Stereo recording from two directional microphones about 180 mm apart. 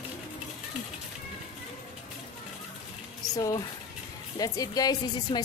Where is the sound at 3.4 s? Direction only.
20° left (ahead or behind).